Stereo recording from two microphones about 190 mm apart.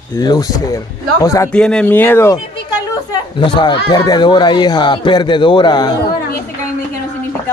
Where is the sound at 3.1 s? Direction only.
25° left (ahead or behind).